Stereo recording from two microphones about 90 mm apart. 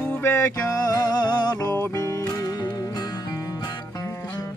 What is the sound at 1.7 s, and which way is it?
Music, 35° left (ahead or behind).